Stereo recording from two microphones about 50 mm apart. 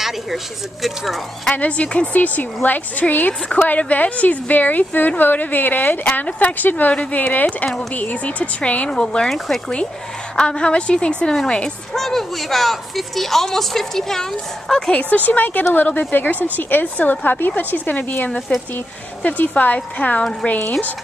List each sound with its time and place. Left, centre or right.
0.8 s a woman's voice: centre
1.5 s a woman's voice: left
6.0 s speech: left
8.9 s a woman's voice: centre
10.3 s a woman's voice: centre
12.0 s a woman's voice: centre
15.0 s a woman's voice: left